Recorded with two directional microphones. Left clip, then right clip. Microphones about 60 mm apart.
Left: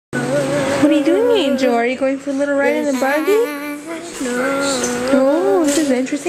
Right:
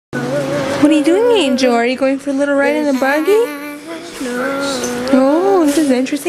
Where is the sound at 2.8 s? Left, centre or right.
Right.